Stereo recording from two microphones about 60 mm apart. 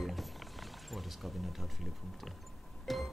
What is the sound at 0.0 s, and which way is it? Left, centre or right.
Music, centre.